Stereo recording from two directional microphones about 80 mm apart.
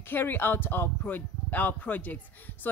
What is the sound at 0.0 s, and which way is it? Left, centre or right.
Speech, left.